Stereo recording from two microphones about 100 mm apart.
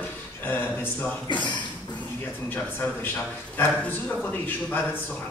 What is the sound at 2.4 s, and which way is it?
Speech, 20° left (ahead or behind).